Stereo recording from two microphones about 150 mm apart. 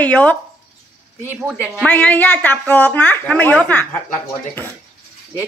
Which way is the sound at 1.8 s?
10° left (ahead or behind).